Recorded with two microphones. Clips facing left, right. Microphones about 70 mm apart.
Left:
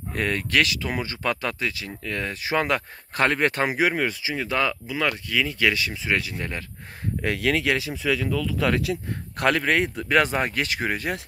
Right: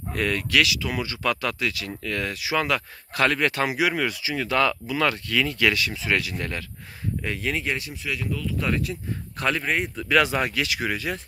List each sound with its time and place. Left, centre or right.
0.1 s speech: left
2.4 s speech: left
3.9 s speech: left
7.3 s speech: left
10.0 s speech: left